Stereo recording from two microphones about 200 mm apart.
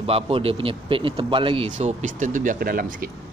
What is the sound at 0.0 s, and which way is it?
A man's voice, 30° right (ahead or behind).